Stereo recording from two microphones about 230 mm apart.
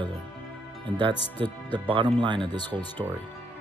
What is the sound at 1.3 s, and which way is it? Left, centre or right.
Speech, centre.